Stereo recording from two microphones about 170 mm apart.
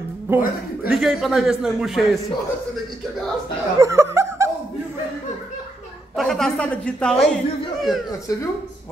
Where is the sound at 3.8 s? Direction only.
15° right (ahead or behind).